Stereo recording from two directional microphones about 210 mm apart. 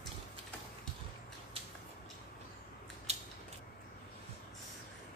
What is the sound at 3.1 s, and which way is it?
Scissors, 30° right (ahead or behind).